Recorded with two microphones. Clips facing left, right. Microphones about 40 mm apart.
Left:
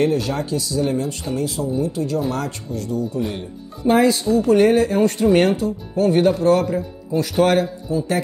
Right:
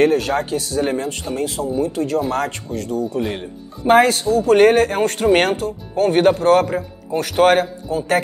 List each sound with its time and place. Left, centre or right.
0.0 s speech: right